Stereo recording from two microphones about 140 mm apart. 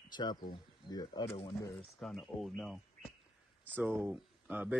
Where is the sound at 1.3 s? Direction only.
45° left (ahead or behind).